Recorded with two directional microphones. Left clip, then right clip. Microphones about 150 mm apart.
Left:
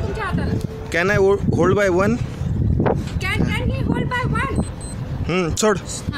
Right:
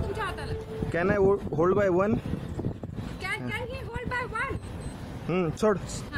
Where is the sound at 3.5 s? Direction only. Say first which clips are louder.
Left 10 dB; 60° left (ahead or behind).